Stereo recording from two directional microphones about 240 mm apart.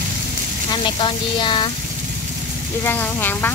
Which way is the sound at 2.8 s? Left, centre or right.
Centre.